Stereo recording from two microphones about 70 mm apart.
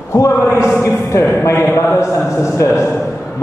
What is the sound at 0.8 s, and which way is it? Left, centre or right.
A man's voice, left.